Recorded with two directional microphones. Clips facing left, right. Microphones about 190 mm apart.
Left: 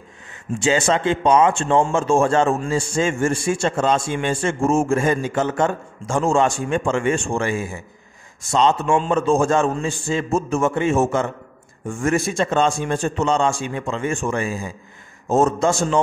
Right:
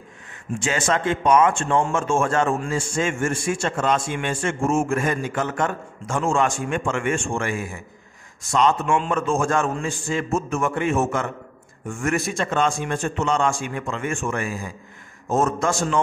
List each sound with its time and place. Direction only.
0.7 s a man's voice: 30° left (ahead or behind)